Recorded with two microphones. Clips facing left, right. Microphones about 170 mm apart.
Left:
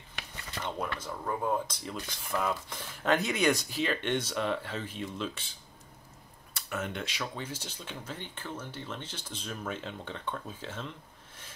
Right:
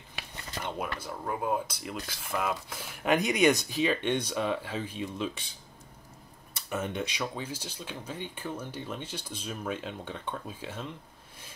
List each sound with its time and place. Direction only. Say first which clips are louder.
0.7 s speech: even; 10° right (ahead or behind)
6.5 s speech: right 3 dB; 20° right (ahead or behind)